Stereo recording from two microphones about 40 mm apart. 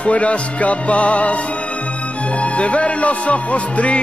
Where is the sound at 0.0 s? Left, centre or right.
Left.